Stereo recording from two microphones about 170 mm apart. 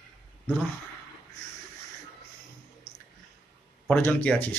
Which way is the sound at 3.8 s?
10° left (ahead or behind).